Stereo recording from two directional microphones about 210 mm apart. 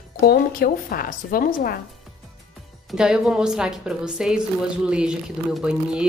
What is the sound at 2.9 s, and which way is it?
A woman's voice, 5° right (ahead or behind).